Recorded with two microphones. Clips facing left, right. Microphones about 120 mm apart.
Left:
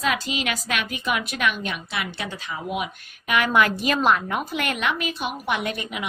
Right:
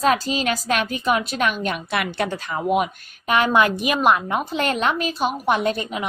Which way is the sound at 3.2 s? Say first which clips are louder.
Right 3 dB; 30° right (ahead or behind).